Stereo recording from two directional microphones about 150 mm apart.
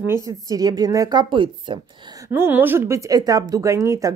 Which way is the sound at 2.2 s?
15° right (ahead or behind).